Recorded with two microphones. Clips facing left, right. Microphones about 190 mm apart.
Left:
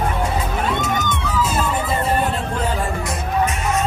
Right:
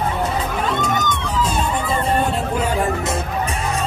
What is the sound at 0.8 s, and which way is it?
Music, 5° left (ahead or behind).